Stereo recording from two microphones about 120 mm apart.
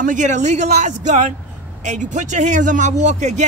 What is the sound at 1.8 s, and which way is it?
A man's voice, 85° right.